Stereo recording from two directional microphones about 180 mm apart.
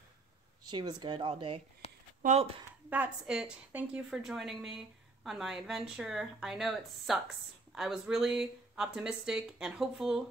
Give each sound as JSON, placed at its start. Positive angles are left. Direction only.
{"t": 0.7, "sound": "speech", "side_deg": -25}
{"t": 1.8, "sound": "a sound", "side_deg": 35}
{"t": 2.9, "sound": "a woman's voice", "side_deg": -5}